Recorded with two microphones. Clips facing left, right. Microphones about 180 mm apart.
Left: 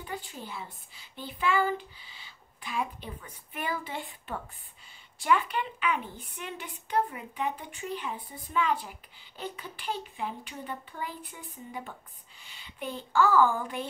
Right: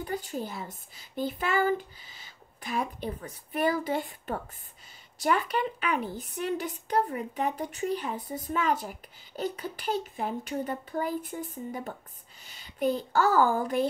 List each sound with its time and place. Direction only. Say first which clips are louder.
0.0 s a child's voice: right 7 dB; 40° right (ahead or behind)